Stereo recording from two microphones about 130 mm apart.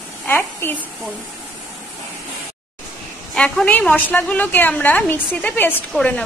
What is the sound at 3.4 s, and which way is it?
A woman's voice, 5° left (ahead or behind).